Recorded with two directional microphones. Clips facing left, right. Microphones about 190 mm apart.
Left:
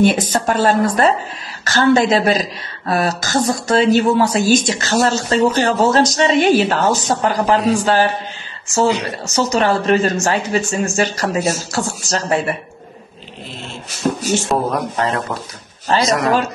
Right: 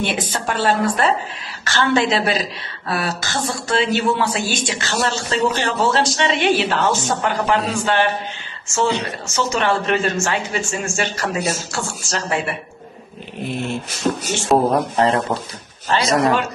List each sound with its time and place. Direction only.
0.0 s speech: 40° left (ahead or behind)
13.4 s dog: 55° right (ahead or behind)
14.7 s a man's voice: 30° right (ahead or behind)